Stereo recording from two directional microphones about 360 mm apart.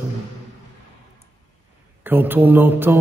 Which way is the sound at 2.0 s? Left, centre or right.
Centre.